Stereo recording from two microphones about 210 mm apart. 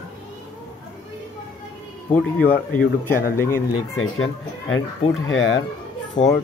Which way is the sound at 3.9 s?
75° left (ahead or behind).